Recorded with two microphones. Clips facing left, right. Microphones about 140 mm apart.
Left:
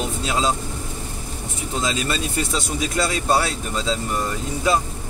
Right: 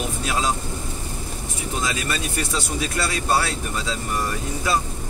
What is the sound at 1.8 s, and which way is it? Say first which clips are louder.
Speech: left 3 dB; 20° left (ahead or behind).